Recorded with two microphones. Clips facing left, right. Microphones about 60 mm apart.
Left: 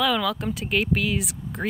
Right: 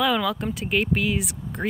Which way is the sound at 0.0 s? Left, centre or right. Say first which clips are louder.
Right 1 dB; centre.